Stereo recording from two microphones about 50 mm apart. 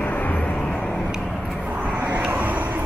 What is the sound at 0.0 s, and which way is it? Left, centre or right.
Vehicle, left.